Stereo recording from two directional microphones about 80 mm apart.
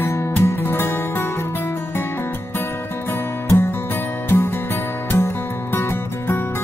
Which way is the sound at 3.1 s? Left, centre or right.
Left.